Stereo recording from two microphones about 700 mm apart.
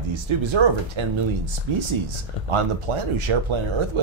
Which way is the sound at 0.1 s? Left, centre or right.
Right.